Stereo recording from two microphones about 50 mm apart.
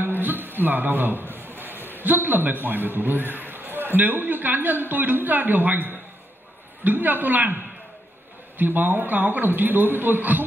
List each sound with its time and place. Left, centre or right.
0.0 s a sound: right
2.0 s a man's voice: right
8.5 s a man's voice: right